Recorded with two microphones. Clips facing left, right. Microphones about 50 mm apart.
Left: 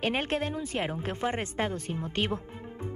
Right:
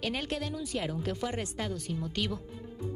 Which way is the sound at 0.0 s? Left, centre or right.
Left.